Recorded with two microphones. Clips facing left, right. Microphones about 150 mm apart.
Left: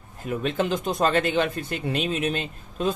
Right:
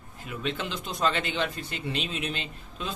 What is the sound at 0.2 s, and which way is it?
Speech, 45° left (ahead or behind).